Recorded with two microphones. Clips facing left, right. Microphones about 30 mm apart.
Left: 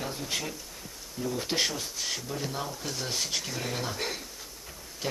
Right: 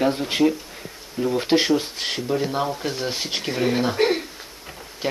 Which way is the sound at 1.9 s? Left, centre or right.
Right.